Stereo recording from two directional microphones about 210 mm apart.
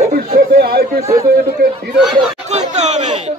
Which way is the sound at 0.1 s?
45° right (ahead or behind).